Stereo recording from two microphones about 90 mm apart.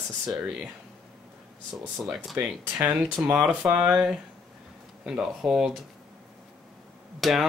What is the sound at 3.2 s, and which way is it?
Speech, 20° right (ahead or behind).